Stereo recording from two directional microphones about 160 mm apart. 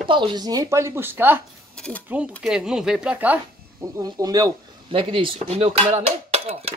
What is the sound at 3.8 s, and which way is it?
Speech, 25° right (ahead or behind).